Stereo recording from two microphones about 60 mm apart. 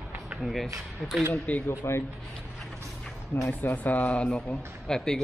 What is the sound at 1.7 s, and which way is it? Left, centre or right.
Speech, left.